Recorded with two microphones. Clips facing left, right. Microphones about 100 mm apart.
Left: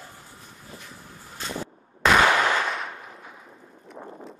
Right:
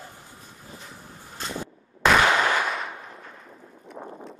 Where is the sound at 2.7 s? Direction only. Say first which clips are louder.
Right 1 dB; centre (ahead or behind).